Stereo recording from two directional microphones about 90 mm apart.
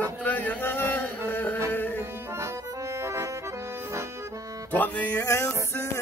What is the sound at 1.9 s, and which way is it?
Accordion, 30° right (ahead or behind).